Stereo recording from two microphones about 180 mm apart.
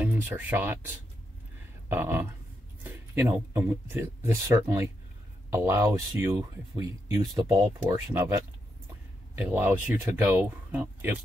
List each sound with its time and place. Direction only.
0.0 s speech: 10° right (ahead or behind)